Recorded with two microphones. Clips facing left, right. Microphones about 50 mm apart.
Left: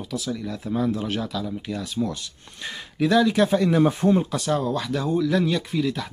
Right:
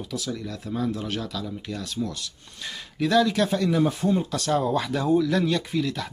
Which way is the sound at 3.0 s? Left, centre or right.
Centre.